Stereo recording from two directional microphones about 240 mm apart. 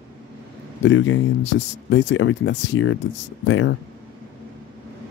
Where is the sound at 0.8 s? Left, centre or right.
Left.